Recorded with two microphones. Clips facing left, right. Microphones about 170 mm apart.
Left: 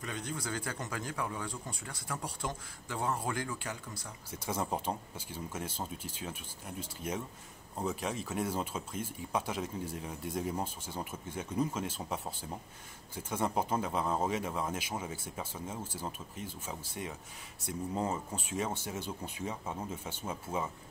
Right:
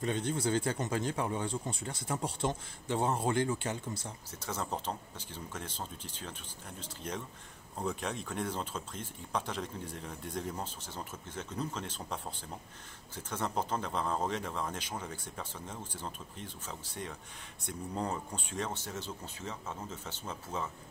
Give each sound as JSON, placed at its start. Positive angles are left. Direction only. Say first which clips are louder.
{"t": 0.0, "sound": "speech", "louder": "right 7 dB", "side_deg": -30}
{"t": 4.3, "sound": "speech", "louder": "left 3 dB", "side_deg": 10}